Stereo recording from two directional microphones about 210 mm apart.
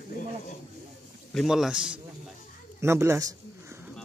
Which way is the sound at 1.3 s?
Centre (ahead or behind).